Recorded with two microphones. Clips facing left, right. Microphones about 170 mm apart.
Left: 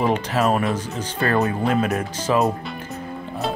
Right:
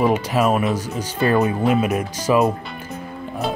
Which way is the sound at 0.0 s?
10° right (ahead or behind).